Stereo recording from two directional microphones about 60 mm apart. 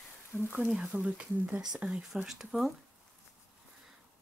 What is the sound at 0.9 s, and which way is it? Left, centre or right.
Speech, right.